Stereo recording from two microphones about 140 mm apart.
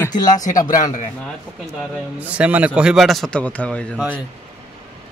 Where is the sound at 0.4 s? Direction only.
65° left (ahead or behind).